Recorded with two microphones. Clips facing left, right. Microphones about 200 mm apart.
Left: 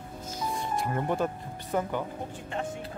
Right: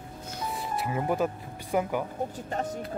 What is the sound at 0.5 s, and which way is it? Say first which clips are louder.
Music: even; 5° right (ahead or behind).